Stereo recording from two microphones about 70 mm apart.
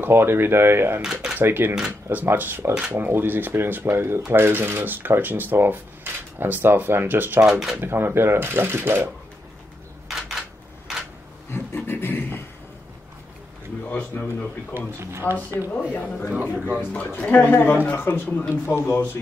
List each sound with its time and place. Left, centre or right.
0.0 s speech: right
1.0 s speech: centre
1.4 s speech: right
7.4 s speech: centre
7.8 s speech: right
10.0 s a sound: centre
11.5 s a sound: left
13.8 s a sound: left
15.0 s speech: right
15.7 s speech: left
16.3 s speech: centre
16.9 s speech: left